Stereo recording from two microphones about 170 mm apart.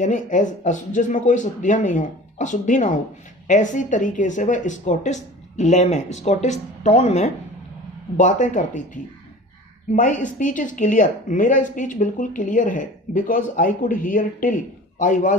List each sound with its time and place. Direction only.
0.0 s a woman's voice: 50° left (ahead or behind)